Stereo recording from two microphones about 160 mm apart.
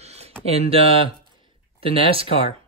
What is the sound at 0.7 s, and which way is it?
Speech, 35° right (ahead or behind).